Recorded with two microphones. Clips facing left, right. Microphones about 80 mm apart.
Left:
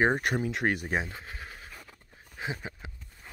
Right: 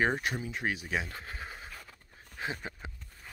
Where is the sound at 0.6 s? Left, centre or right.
Left.